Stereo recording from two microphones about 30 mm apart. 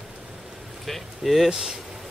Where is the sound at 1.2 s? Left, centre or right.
Centre.